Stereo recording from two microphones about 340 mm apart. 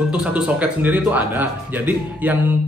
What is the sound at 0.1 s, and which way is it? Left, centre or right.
A man's voice, centre.